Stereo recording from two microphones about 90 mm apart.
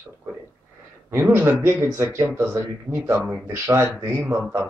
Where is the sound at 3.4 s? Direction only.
30° right (ahead or behind).